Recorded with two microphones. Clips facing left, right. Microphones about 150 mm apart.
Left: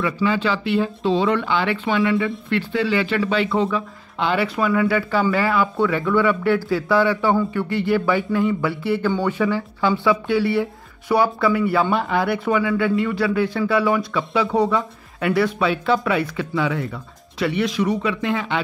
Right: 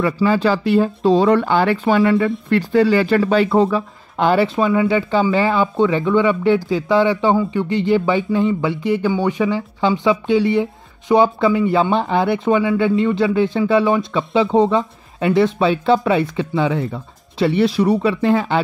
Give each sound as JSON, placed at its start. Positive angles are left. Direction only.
{"t": 0.0, "sound": "speech", "side_deg": -40}
{"t": 4.6, "sound": "speech", "side_deg": -25}